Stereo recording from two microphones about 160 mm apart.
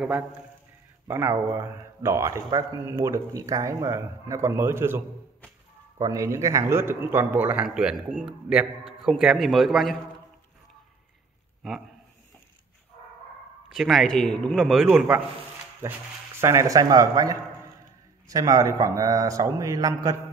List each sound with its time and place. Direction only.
1.0 s a man's voice: 15° right (ahead or behind); by 9.9 s centre (ahead or behind)
11.6 s a man's voice: centre (ahead or behind)
13.7 s a man's voice: centre (ahead or behind)
16.3 s a man's voice: 20° right (ahead or behind)